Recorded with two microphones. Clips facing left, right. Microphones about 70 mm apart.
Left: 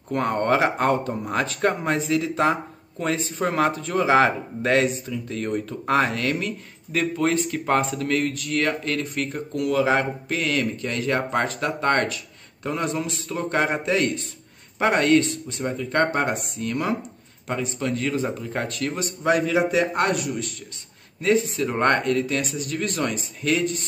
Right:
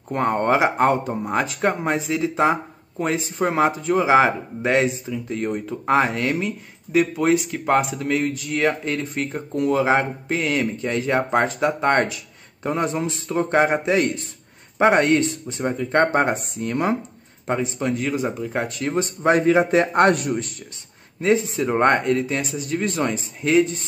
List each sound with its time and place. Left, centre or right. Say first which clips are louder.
0.1 s speech: right 2 dB; centre; by 20.3 s right
21.2 s speech: right 1 dB; right